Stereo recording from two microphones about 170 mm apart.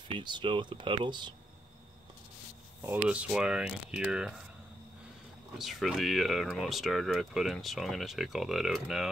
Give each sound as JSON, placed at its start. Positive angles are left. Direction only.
{"t": 0.1, "sound": "speech", "side_deg": -30}
{"t": 2.8, "sound": "speech", "side_deg": -10}
{"t": 5.6, "sound": "speech", "side_deg": 0}